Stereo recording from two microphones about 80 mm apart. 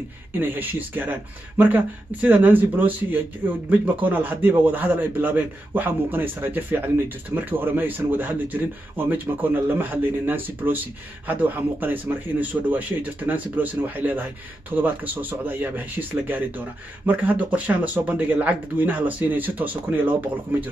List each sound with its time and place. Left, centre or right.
0.3 s speech: right